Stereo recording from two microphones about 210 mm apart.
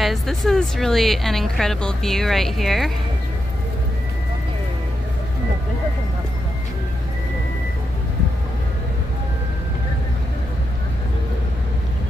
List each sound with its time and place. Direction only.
0.0 s speech: centre (ahead or behind)